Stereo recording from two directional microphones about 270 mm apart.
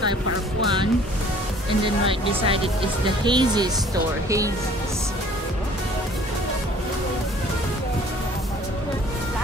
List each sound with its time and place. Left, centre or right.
2.0 s speech: right